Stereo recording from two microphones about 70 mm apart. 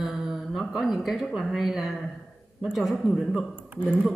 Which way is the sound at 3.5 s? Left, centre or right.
Right.